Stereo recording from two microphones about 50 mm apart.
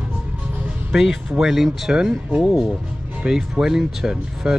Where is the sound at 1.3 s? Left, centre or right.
Centre.